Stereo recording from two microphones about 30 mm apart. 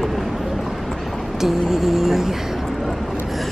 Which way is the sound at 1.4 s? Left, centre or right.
Centre.